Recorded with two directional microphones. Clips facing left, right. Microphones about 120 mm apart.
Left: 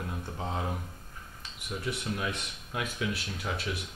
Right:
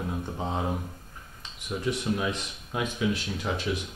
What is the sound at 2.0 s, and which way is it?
Speech, 15° right (ahead or behind).